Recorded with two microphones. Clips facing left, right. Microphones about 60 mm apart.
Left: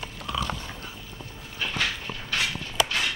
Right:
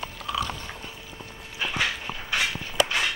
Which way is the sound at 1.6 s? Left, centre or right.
Centre.